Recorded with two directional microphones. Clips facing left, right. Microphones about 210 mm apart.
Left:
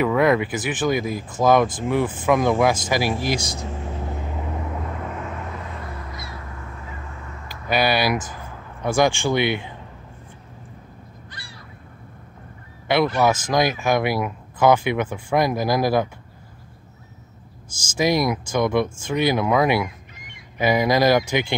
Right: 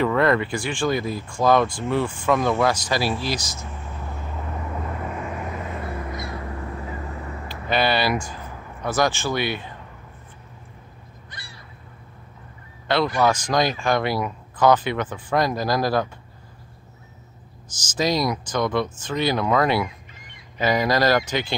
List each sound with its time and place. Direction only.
0.0 s speech: 10° left (ahead or behind)
3.3 s vehicle: 30° left (ahead or behind)
4.7 s crow: 5° right (ahead or behind)
6.6 s vehicle: 35° right (ahead or behind)
7.7 s speech: 10° left (ahead or behind)
12.8 s speech: 10° left (ahead or behind)
17.9 s speech: 10° left (ahead or behind)